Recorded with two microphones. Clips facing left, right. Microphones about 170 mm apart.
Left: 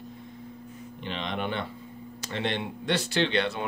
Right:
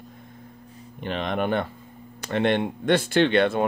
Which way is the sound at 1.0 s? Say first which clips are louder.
Right 6 dB; 50° right (ahead or behind).